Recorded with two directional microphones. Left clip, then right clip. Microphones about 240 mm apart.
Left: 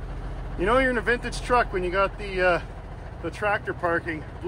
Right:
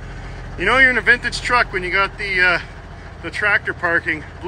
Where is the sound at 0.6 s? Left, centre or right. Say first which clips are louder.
Right 8 dB; centre.